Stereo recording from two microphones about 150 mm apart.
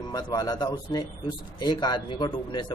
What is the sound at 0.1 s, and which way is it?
A man's voice, 25° left (ahead or behind).